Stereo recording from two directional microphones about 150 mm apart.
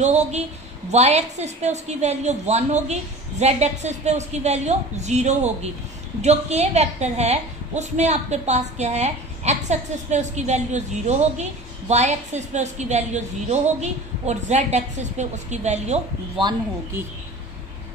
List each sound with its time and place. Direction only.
0.0 s a woman's voice: 50° right (ahead or behind)